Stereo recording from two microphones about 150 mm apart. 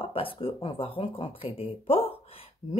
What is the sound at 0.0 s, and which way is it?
Speech, 40° left (ahead or behind).